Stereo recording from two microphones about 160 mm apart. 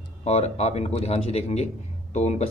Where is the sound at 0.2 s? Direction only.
40° left (ahead or behind).